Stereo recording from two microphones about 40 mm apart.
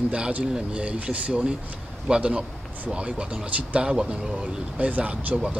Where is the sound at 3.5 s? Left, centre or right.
Right.